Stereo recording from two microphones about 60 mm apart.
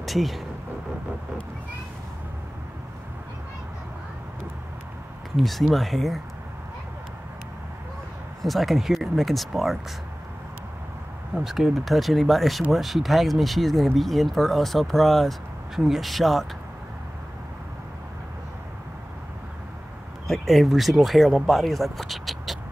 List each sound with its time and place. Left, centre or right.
0.0 s a sound: centre
5.3 s speech: centre
8.4 s speech: centre
11.3 s speech: centre
20.2 s speech: centre